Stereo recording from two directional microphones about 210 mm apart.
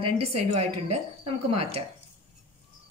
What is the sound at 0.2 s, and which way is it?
Speech, 30° right (ahead or behind).